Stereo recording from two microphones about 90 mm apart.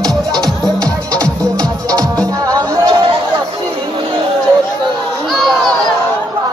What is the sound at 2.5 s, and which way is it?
Music, 45° right (ahead or behind).